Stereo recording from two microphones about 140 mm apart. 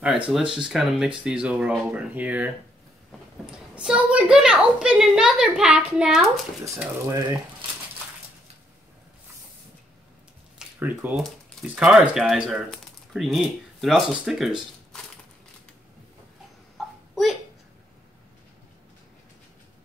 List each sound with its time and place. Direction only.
0.0 s a woman's voice: 5° right (ahead or behind)
3.7 s a woman's voice: 5° right (ahead or behind)
6.6 s speech: 25° right (ahead or behind)
10.8 s speech: 15° right (ahead or behind)
16.7 s a sound: centre (ahead or behind)